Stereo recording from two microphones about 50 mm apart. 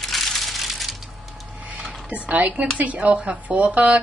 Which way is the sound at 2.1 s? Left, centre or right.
Right.